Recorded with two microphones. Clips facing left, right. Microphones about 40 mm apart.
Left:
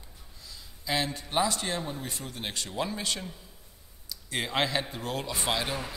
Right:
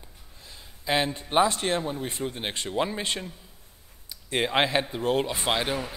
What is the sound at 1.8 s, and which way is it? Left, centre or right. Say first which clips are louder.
Speech: right 6 dB; right.